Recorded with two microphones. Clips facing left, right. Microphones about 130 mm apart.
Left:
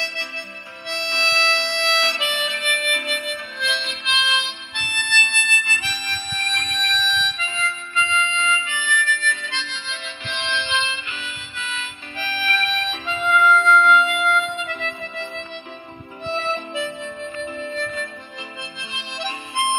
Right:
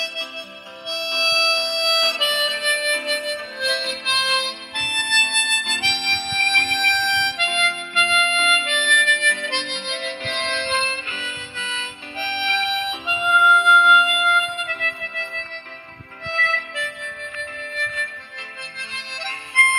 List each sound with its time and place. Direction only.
0.0 s harmonica: 15° right (ahead or behind); by 15.4 s 5° left (ahead or behind)
16.3 s harmonica: 20° left (ahead or behind)